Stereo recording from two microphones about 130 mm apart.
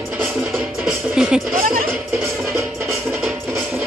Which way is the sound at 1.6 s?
90° right.